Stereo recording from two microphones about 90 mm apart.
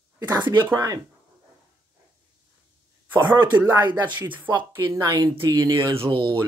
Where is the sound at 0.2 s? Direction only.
25° right (ahead or behind).